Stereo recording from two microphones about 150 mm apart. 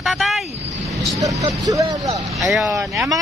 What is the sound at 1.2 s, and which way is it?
Speech, 20° right (ahead or behind).